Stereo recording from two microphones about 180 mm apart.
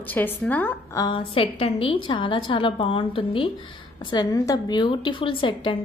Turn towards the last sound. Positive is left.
turn(degrees=30)  # may be behind; listen again after turning